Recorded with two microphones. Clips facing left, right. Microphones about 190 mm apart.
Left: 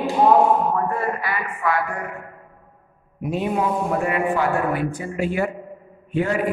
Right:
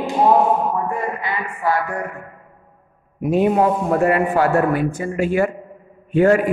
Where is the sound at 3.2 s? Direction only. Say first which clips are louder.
Right 7 dB; 55° right (ahead or behind).